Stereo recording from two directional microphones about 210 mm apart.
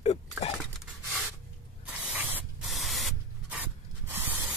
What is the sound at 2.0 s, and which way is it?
Spray, 5° right (ahead or behind).